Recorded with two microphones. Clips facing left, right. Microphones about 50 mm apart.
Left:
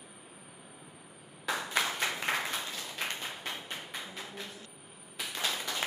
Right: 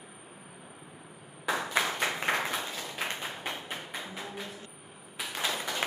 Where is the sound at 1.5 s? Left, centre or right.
Right.